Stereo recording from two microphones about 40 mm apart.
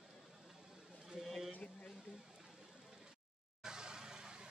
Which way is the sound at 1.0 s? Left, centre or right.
Centre.